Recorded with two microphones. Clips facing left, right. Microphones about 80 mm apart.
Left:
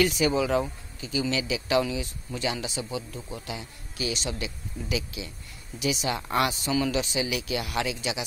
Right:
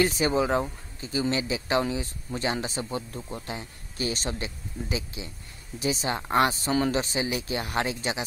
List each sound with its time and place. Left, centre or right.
0.0 s speech: right